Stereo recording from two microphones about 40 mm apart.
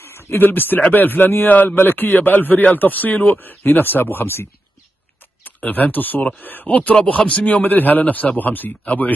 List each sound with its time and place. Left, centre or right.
0.0 s speech: left
5.7 s a man's voice: left